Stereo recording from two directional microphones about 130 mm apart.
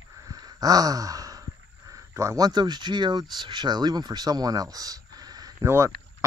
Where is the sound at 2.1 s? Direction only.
20° right (ahead or behind).